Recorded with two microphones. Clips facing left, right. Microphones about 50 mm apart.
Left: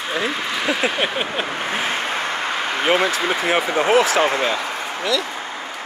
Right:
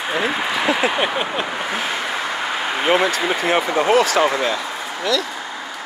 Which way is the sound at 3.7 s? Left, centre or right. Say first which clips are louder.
Even; left.